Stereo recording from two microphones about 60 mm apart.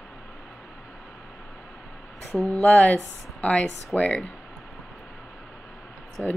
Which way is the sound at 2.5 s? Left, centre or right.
Left.